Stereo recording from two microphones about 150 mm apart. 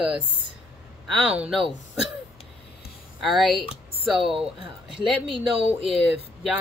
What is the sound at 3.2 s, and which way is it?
Speech, centre (ahead or behind).